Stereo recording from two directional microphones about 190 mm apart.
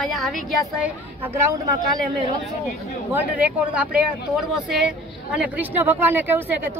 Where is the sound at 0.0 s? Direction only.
Centre (ahead or behind).